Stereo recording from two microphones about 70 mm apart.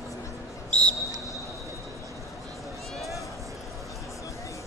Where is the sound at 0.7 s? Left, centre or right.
Centre.